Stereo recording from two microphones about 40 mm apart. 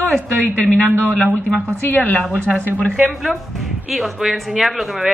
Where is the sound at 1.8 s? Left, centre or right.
Left.